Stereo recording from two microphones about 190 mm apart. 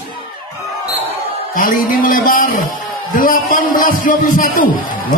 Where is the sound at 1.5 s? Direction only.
45° left (ahead or behind).